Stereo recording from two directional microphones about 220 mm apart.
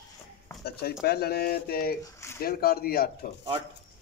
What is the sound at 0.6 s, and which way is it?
Speech, 45° left (ahead or behind).